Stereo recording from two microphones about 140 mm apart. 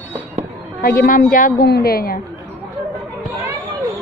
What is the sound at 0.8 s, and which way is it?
A woman's voice, 90° left.